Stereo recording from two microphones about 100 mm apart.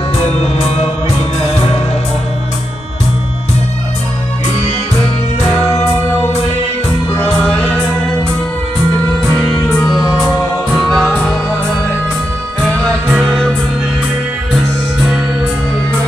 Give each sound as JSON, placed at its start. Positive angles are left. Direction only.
{"t": 0.2, "sound": "music", "side_deg": 85}
{"t": 7.4, "sound": "music", "side_deg": 15}
{"t": 9.2, "sound": "music", "side_deg": 10}
{"t": 9.9, "sound": "music", "side_deg": -5}
{"t": 13.2, "sound": "music", "side_deg": 0}